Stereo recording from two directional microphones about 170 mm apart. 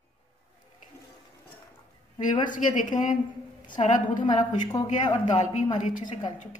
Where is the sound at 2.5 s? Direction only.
50° left (ahead or behind).